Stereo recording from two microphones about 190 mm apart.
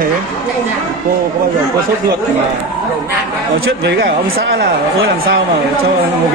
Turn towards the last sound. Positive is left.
turn(degrees=-55)  # may be behind; listen again after turning